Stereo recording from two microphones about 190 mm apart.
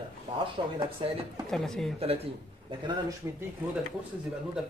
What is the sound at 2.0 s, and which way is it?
A man's voice, 30° right (ahead or behind).